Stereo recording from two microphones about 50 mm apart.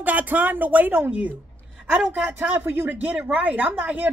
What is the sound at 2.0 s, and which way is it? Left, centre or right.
Speech, right.